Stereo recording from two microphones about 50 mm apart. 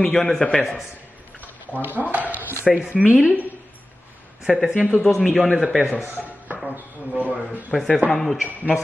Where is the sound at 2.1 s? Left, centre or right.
Right.